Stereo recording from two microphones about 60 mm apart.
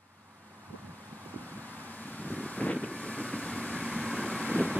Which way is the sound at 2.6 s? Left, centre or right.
Left.